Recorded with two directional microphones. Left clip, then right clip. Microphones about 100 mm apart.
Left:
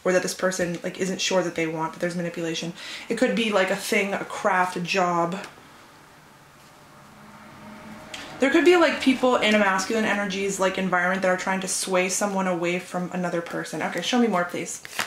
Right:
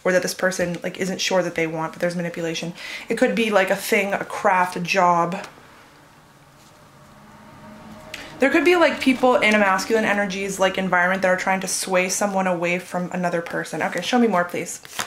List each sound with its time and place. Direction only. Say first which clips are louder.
0.0 s speech: right 3 dB; 35° right (ahead or behind)
8.1 s speech: right 3 dB; 30° right (ahead or behind)
15.0 s speech: even; 15° right (ahead or behind)